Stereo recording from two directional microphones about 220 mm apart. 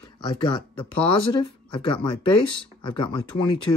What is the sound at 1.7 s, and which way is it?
Speech, 20° left (ahead or behind).